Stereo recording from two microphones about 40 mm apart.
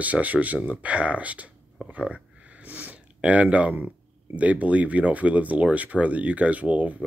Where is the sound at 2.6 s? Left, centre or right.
Right.